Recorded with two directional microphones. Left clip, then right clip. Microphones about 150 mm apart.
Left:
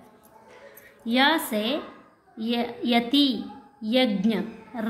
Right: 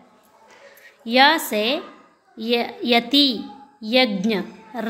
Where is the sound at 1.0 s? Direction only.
20° right (ahead or behind).